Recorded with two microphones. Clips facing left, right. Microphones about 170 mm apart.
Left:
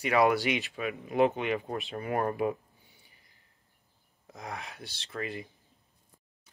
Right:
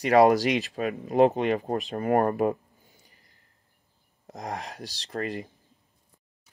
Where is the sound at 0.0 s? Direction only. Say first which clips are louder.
Right 6 dB; 40° right (ahead or behind).